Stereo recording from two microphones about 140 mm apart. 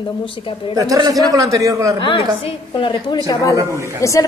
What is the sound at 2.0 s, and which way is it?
A woman's voice, 35° left (ahead or behind).